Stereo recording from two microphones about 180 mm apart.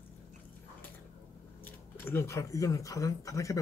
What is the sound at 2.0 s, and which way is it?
Speech, 15° left (ahead or behind).